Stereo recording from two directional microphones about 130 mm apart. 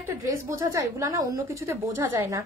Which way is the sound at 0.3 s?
25° right (ahead or behind).